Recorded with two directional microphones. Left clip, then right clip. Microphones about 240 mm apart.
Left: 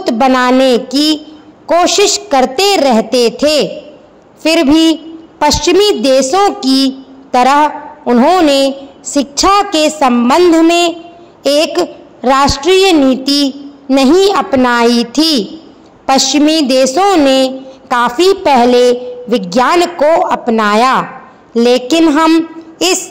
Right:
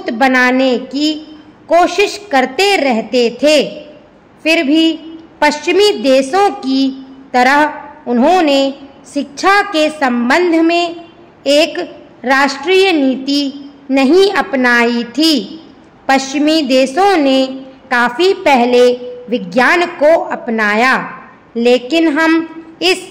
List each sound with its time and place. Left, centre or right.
0.0 s a woman's voice: centre